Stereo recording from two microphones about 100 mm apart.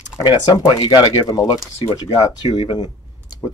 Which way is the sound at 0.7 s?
45° left (ahead or behind).